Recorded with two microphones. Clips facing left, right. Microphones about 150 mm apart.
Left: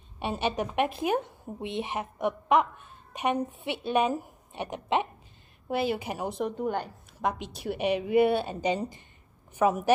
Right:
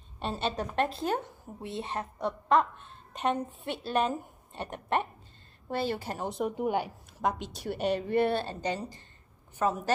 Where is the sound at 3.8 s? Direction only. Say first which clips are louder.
Left 3 dB; centre (ahead or behind).